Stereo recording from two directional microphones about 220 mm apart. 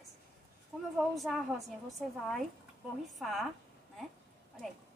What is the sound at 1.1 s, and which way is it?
Speech, centre (ahead or behind).